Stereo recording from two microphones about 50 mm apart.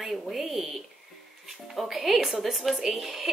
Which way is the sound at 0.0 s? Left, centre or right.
Centre.